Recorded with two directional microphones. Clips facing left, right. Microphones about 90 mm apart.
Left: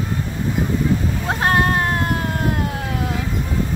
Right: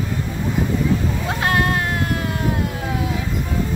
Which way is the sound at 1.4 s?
35° left (ahead or behind).